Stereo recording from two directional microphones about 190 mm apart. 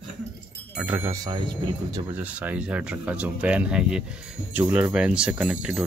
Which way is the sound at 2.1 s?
10° right (ahead or behind).